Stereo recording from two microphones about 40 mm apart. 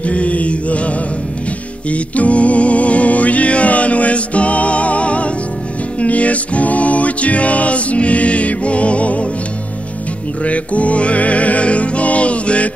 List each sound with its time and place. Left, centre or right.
0.0 s mantra: left
1.9 s music: left
10.4 s music: left